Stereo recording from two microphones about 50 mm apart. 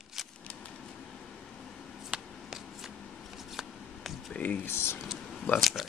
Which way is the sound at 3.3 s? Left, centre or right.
Centre.